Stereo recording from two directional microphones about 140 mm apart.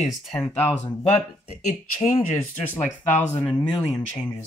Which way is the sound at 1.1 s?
50° left (ahead or behind).